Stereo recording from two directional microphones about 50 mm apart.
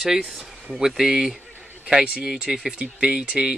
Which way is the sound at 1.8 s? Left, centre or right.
Centre.